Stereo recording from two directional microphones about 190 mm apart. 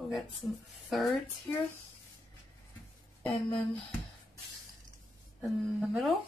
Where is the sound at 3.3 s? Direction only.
25° left (ahead or behind).